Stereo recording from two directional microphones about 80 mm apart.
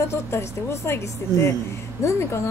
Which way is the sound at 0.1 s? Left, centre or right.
Left.